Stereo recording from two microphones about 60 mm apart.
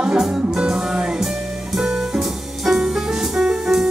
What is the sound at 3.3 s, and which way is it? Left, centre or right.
Music, centre.